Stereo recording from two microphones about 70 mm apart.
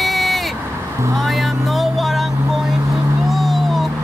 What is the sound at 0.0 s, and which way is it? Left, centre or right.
Vehicle, centre.